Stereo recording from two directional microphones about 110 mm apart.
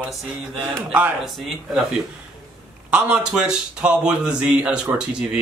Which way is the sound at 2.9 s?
10° right (ahead or behind).